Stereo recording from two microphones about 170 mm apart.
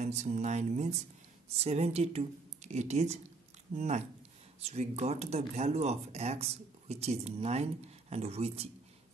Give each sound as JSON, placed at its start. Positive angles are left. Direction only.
{"t": 0.0, "sound": "speech", "side_deg": -40}